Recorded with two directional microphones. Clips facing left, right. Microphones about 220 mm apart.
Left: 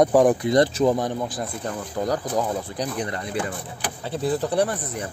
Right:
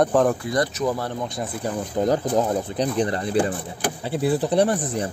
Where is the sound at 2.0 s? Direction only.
25° right (ahead or behind).